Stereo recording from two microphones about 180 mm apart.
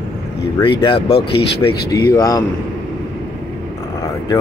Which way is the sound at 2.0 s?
20° left (ahead or behind).